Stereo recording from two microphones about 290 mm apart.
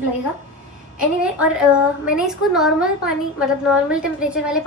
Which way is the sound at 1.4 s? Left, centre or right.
Centre.